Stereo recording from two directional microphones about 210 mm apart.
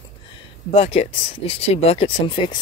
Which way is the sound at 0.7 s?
30° left (ahead or behind).